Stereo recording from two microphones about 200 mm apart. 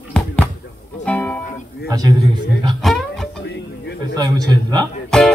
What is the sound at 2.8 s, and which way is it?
Music, centre (ahead or behind).